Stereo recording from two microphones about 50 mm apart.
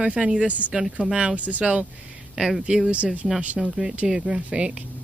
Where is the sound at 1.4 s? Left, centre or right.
Right.